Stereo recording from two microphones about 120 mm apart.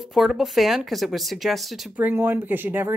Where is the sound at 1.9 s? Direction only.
15° right (ahead or behind).